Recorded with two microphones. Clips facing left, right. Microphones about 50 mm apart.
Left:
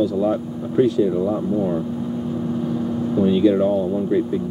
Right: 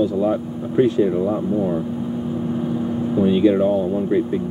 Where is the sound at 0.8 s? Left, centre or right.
Right.